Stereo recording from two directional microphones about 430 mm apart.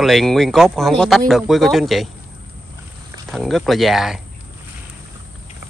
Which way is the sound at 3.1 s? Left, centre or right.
Centre.